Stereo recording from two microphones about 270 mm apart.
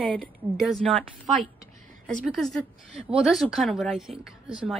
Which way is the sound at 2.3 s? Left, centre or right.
Centre.